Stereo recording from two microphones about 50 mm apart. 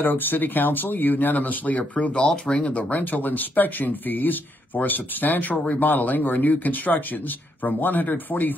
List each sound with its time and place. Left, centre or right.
0.0 s speech: left